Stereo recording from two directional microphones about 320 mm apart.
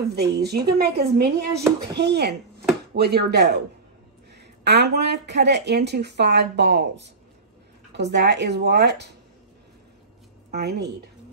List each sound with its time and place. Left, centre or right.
0.1 s speech: right
4.6 s speech: right
10.5 s speech: right